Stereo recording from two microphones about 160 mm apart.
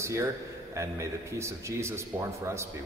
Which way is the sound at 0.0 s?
20° right (ahead or behind).